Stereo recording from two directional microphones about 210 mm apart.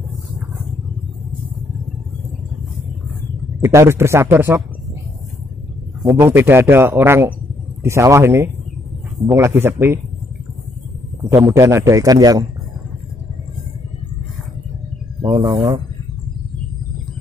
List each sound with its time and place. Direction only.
3.6 s a man's voice: 10° right (ahead or behind)
6.0 s a man's voice: 15° right (ahead or behind)
11.2 s a man's voice: 15° right (ahead or behind)
15.3 s a man's voice: 15° right (ahead or behind)